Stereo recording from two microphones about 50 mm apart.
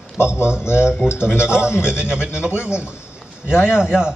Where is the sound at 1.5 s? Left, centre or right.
Centre.